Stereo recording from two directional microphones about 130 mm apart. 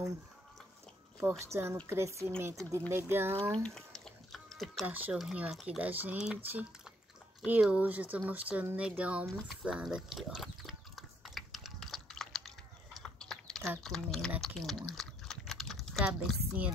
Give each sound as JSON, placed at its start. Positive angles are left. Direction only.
{"t": 1.5, "sound": "speech", "side_deg": -20}
{"t": 3.6, "sound": "a sound", "side_deg": 5}
{"t": 4.8, "sound": "speech", "side_deg": -10}
{"t": 9.3, "sound": "pig", "side_deg": -5}
{"t": 14.4, "sound": "speech", "side_deg": 0}